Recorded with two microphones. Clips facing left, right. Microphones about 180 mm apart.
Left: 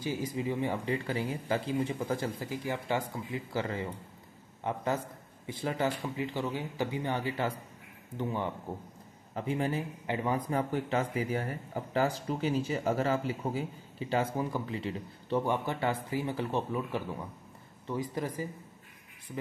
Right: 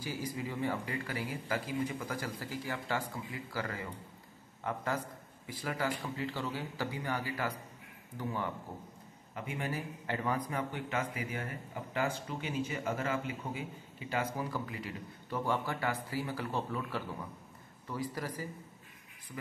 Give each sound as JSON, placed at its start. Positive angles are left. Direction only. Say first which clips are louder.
{"t": 0.0, "sound": "speech", "louder": "left 5 dB", "side_deg": 20}
{"t": 9.3, "sound": "speech", "louder": "left 7 dB", "side_deg": 35}
{"t": 10.5, "sound": "speech", "louder": "left 6 dB", "side_deg": 35}